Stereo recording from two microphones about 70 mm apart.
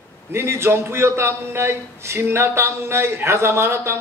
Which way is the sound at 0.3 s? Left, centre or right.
Right.